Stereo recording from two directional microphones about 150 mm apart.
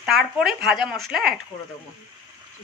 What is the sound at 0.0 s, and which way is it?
Speech, centre (ahead or behind).